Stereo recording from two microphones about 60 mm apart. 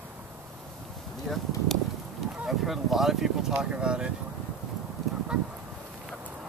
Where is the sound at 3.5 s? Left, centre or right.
Centre.